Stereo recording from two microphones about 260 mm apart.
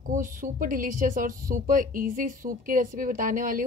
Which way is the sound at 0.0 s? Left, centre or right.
Right.